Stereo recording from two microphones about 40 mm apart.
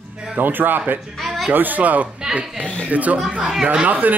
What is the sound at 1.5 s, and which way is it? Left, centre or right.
Speech, right.